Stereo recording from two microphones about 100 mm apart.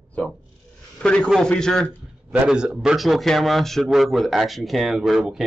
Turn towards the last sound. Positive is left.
turn(degrees=-5)  # may be behind; listen again after turning